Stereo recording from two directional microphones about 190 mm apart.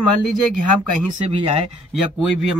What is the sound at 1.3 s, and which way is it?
Speech, 30° right (ahead or behind).